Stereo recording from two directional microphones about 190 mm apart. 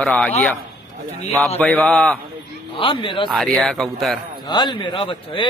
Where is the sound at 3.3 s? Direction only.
Centre (ahead or behind).